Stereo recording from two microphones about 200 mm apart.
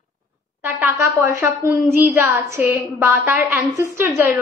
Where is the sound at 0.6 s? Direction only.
15° right (ahead or behind).